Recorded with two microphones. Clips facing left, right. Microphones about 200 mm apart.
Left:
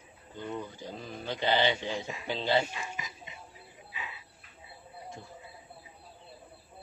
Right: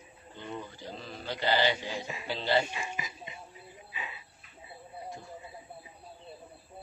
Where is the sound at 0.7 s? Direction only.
15° left (ahead or behind).